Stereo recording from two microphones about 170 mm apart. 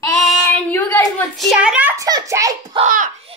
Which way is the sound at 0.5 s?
10° left (ahead or behind).